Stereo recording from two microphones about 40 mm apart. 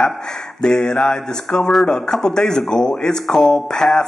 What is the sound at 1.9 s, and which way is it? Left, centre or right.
Speech, centre.